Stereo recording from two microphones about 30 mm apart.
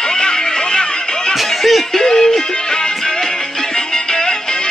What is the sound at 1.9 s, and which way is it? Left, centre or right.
Music, centre.